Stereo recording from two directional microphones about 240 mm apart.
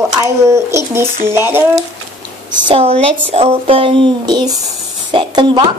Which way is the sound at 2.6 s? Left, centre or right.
Right.